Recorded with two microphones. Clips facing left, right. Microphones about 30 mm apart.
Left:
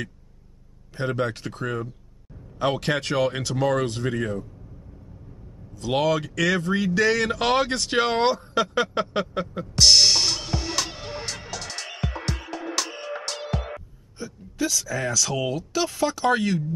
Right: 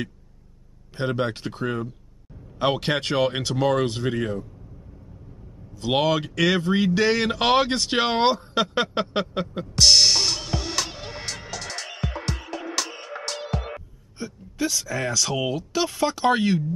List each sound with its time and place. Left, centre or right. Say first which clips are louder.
0.9 s speech: right 1 dB; right
5.8 s speech: right 1 dB; centre
9.8 s music: even; centre
14.1 s speech: even; centre